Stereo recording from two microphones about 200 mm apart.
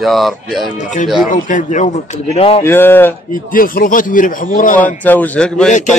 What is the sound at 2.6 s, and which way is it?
Speech, 10° left (ahead or behind).